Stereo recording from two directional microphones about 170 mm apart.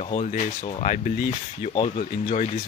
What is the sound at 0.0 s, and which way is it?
Speech, 40° left (ahead or behind).